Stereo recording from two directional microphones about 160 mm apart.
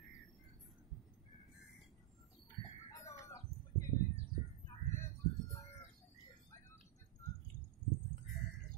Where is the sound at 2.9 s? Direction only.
20° left (ahead or behind).